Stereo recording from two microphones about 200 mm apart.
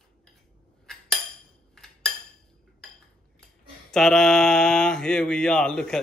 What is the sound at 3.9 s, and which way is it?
Mantra, centre (ahead or behind).